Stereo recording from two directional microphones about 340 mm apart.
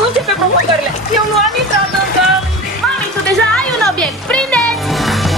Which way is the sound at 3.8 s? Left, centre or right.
Centre.